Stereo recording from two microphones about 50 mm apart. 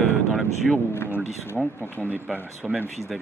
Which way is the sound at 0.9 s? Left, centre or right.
Left.